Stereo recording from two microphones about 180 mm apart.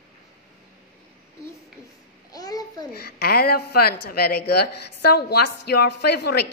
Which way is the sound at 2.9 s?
60° left (ahead or behind).